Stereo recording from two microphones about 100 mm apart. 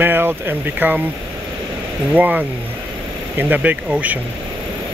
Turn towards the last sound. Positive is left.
turn(degrees=-15)  # may be behind; listen again after turning